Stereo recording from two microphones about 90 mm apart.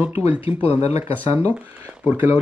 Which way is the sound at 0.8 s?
35° right (ahead or behind).